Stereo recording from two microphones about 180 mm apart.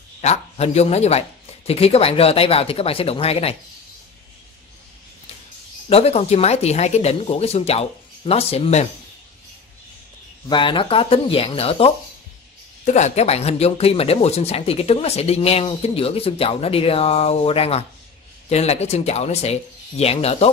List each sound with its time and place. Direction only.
0.2 s speech: 40° left (ahead or behind)
5.9 s speech: 35° left (ahead or behind)
10.5 s speech: 25° left (ahead or behind)